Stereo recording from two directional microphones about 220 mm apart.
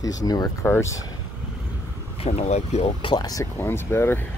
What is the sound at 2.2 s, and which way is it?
Speech, 30° left (ahead or behind).